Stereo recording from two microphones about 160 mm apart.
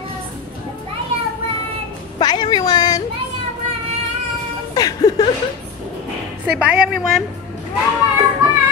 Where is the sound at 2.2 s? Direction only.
25° left (ahead or behind).